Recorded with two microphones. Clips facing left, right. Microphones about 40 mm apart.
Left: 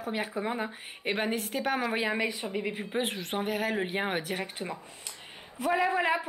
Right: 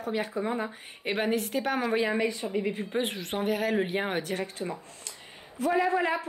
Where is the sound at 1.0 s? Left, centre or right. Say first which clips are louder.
Right 2 dB; centre.